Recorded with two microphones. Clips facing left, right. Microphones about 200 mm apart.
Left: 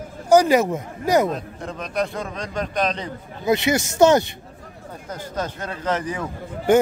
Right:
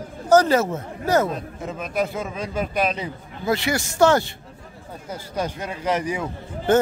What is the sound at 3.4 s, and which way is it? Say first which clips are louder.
Speech: left 3 dB; 20° left (ahead or behind).